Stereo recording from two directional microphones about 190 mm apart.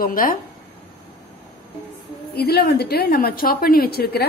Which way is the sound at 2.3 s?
55° left (ahead or behind).